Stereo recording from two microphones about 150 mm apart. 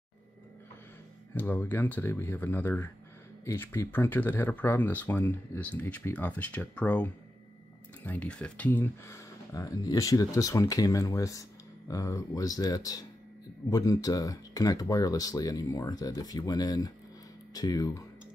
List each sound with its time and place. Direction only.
1.3 s speech: 15° left (ahead or behind)